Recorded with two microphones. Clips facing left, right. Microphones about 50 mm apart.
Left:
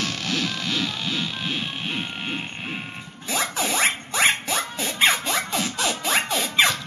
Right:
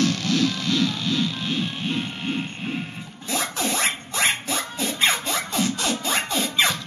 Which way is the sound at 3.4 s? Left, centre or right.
Centre.